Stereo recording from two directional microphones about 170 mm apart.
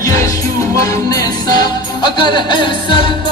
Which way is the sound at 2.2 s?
30° left (ahead or behind).